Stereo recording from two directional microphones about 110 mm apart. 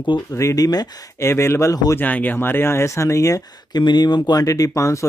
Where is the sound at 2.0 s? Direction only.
15° left (ahead or behind).